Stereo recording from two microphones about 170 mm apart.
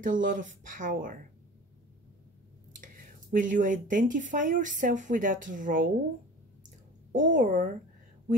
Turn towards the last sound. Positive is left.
turn(degrees=-50)  # may be behind; listen again after turning